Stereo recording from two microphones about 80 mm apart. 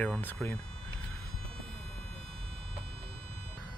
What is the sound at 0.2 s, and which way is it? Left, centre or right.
Speech, left.